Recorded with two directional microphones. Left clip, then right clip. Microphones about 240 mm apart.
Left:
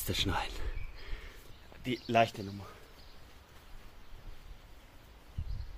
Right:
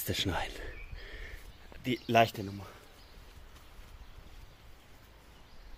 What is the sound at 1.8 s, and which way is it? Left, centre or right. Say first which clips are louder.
Speech: right 2 dB; right.